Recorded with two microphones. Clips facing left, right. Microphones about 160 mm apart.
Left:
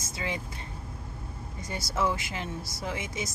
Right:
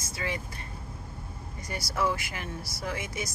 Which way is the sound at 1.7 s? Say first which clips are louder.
Even; 20° left (ahead or behind).